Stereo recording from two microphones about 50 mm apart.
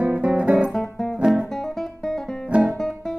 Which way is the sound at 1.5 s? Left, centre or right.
Centre.